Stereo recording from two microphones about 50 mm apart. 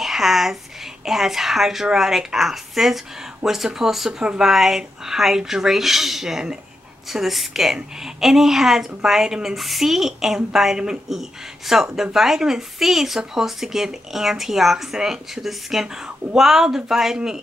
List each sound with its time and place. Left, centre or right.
0.0 s a woman's voice: centre
4.2 s a woman's voice: centre
4.5 s a woman's voice: centre